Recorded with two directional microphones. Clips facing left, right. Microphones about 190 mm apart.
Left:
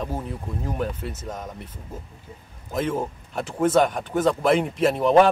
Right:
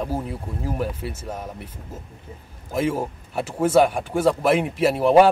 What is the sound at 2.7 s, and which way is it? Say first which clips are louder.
Speech: right 2 dB; 10° right (ahead or behind).